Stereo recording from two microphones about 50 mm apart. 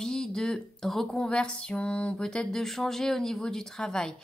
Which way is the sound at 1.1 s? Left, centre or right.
Centre.